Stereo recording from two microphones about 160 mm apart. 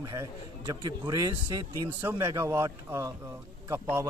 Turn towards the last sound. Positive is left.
turn(degrees=-15)  # may be behind; listen again after turning